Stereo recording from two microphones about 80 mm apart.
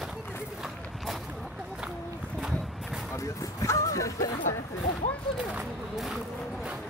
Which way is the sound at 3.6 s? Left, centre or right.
Left.